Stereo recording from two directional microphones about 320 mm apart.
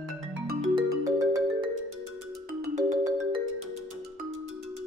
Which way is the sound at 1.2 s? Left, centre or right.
Centre.